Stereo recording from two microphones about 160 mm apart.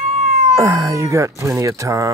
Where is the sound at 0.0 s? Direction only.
45° right (ahead or behind).